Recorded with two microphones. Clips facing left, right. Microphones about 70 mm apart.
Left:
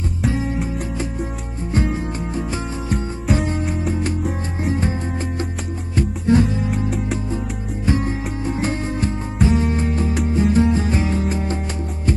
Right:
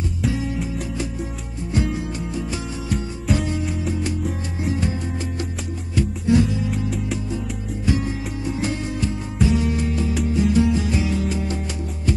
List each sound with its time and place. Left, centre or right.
0.3 s music: left
1.7 s music: left
5.9 s music: left
7.3 s music: left